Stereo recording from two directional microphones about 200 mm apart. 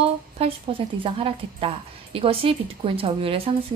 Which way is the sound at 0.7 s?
25° right (ahead or behind).